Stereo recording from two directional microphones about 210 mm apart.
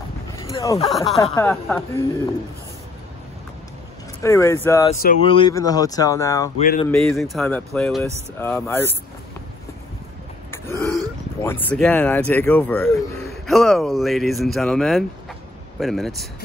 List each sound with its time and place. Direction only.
0.4 s a sound: 15° left (ahead or behind)
0.8 s speech: centre (ahead or behind)
1.1 s speech: 15° left (ahead or behind)
4.2 s speech: 15° left (ahead or behind)
5.2 s speech: 25° left (ahead or behind)
6.9 s speech: centre (ahead or behind)
10.5 s throat clearing: 10° left (ahead or behind)
11.4 s speech: 10° left (ahead or behind)